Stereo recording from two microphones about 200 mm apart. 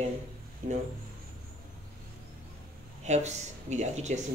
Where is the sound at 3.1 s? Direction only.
35° right (ahead or behind).